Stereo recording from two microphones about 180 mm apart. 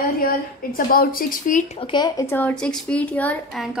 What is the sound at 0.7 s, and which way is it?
Speech, 55° left (ahead or behind).